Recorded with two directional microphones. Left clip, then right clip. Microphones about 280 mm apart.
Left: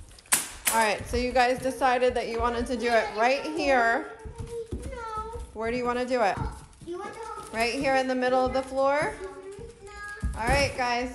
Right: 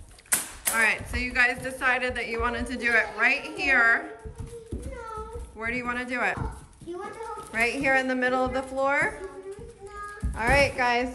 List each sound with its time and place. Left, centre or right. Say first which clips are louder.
0.3 s speech: left 2 dB; centre
5.6 s speech: left 2 dB; centre
10.3 s speech: right 3 dB; centre